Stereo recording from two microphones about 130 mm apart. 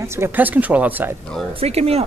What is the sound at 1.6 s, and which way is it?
Speech, 50° right (ahead or behind).